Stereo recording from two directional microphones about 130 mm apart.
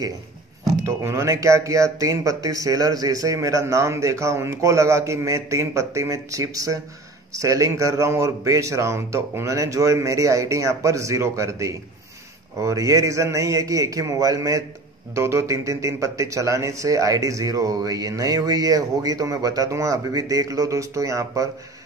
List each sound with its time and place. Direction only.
0.8 s speech: 20° right (ahead or behind)